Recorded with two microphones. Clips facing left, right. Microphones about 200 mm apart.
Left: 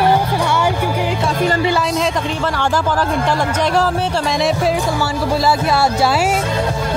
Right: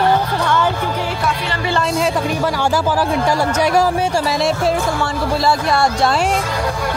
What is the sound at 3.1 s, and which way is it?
Speech, 10° right (ahead or behind).